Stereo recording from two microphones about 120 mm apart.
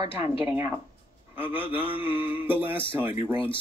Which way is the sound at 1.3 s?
15° right (ahead or behind).